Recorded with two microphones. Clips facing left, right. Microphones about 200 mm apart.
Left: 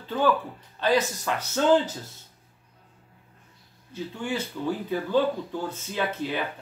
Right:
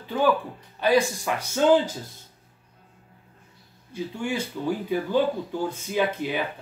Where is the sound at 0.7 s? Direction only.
10° right (ahead or behind).